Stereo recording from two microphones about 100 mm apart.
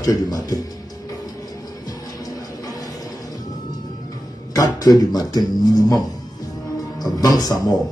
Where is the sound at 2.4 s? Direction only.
35° left (ahead or behind).